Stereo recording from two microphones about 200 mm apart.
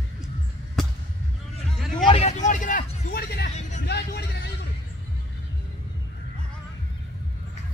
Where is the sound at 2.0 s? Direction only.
30° left (ahead or behind); by 3.5 s 50° left (ahead or behind).